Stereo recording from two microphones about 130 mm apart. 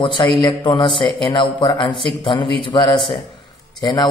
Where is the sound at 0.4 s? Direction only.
30° left (ahead or behind).